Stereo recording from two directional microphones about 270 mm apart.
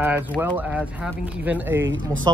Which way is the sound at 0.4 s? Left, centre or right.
Centre.